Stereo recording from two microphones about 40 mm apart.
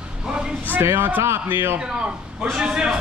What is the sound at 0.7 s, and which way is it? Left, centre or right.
A man's voice, right.